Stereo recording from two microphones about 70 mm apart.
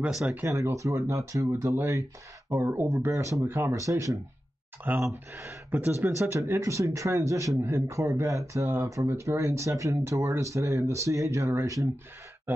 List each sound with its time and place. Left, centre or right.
0.1 s speech: centre
0.5 s speech: right
2.5 s speech: right
3.1 s speech: right
3.4 s speech: right
3.7 s speech: right
4.9 s speech: right
5.9 s speech: right
12.5 s speech: right